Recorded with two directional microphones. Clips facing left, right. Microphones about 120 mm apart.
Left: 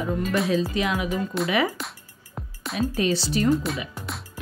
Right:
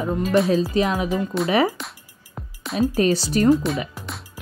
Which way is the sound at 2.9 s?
45° right (ahead or behind).